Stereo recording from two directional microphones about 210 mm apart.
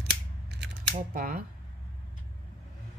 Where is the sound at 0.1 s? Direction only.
55° right (ahead or behind).